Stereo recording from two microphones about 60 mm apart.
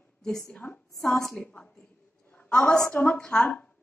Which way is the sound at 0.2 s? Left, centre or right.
Centre.